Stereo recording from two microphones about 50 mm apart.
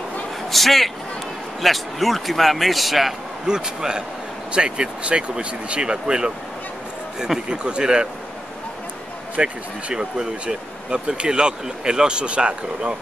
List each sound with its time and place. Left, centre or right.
0.5 s speech: centre
3.4 s speech: centre
9.4 s speech: right